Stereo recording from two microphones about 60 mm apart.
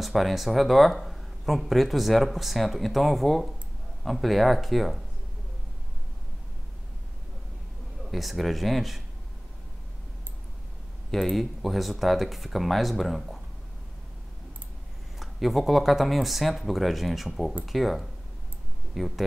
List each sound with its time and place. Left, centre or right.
0.0 s speech: centre
8.1 s speech: centre
11.1 s speech: centre
15.1 s speech: centre